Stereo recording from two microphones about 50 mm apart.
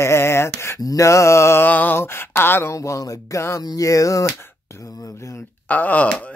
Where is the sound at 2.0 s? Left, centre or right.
Left.